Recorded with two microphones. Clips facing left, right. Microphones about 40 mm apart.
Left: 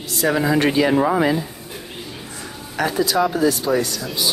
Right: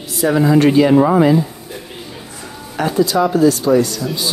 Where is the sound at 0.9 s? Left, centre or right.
Centre.